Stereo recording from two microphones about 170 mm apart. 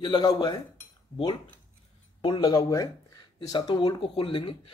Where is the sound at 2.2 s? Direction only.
25° left (ahead or behind).